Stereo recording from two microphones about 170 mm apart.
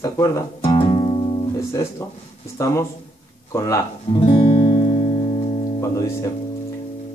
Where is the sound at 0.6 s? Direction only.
30° left (ahead or behind).